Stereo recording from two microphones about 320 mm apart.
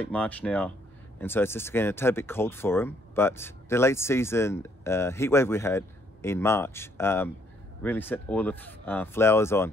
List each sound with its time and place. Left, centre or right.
0.0 s speech: centre